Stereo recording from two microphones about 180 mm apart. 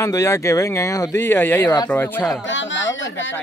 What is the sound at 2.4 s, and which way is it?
Speech, 90° left.